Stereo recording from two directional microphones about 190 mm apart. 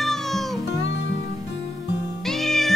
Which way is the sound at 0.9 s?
65° left (ahead or behind).